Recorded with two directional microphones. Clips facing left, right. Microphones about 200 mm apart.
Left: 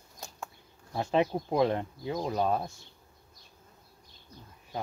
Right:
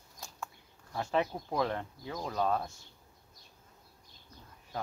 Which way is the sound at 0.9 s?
20° left (ahead or behind).